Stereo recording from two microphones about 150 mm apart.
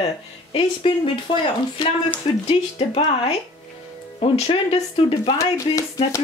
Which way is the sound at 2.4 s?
45° left (ahead or behind).